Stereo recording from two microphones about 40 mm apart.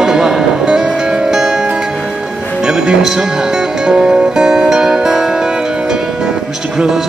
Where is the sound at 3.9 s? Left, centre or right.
Centre.